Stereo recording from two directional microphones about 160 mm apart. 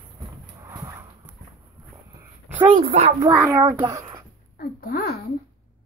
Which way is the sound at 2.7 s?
40° right (ahead or behind).